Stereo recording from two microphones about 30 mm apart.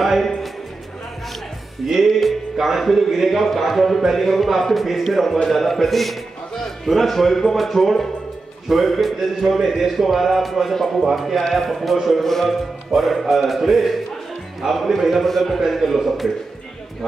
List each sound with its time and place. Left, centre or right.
0.0 s speech: centre
2.0 s a man's voice: centre
2.5 s music: centre
2.8 s a man's voice: centre
10.7 s a man's voice: centre
11.1 s a man's voice: centre
15.2 s a man's voice: centre